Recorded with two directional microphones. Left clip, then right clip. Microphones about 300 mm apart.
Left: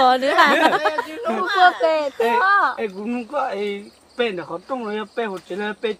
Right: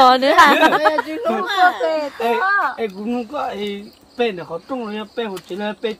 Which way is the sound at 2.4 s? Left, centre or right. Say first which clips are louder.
Left 2 dB; left.